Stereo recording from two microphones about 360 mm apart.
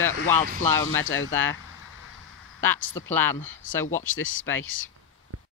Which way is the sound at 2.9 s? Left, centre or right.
Centre.